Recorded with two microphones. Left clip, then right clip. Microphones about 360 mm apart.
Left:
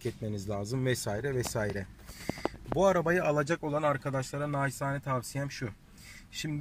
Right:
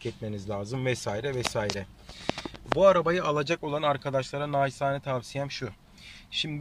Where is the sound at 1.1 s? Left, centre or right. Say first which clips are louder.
Right 3 dB; right.